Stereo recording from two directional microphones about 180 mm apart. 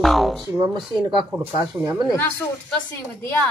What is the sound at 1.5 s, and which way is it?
Speech, 25° right (ahead or behind).